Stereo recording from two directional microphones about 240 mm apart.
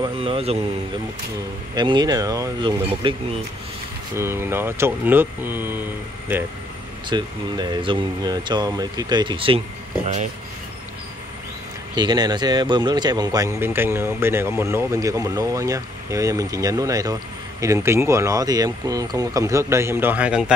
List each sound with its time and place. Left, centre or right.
0.0 s a sound: right
1.8 s speech: centre
7.1 s speech: centre
11.9 s speech: centre